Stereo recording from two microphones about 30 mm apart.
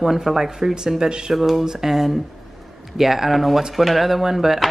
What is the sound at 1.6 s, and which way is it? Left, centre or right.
Speech, right.